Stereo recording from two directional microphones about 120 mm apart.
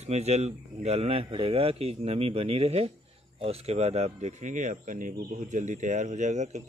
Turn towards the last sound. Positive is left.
turn(degrees=-85)